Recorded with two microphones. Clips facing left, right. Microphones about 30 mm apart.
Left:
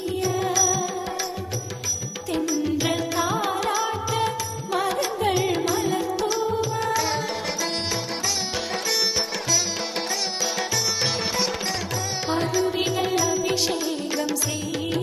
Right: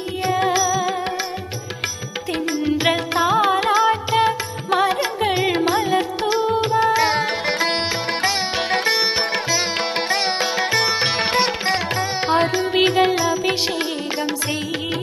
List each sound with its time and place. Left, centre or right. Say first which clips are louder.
0.2 s music: right 6 dB; right
2.3 s music: right 3 dB; right
8.2 s sitar: right 6 dB; right
11.1 s music: right 6 dB; right
13.7 s music: right 3 dB; right